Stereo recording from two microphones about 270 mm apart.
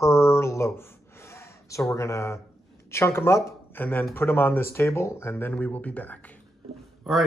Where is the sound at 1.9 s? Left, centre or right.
Centre.